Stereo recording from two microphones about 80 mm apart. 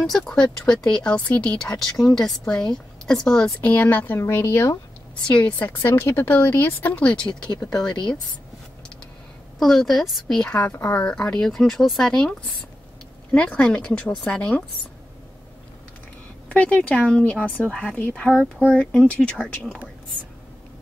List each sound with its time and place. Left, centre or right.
0.0 s speech: centre
3.6 s speech: centre
5.2 s speech: centre
9.6 s a woman's voice: centre
16.4 s speech: centre